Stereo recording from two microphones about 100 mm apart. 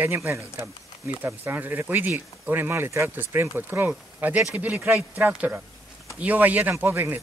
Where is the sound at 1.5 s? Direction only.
20° right (ahead or behind).